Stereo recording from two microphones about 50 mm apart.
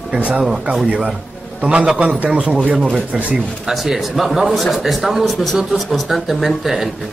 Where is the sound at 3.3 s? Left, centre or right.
Centre.